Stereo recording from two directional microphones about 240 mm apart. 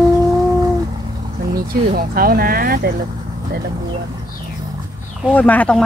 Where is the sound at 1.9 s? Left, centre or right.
Right.